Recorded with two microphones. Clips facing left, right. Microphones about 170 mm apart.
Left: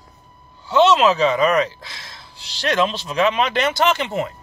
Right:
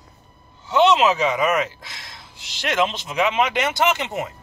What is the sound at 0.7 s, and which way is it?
Speech, 20° right (ahead or behind).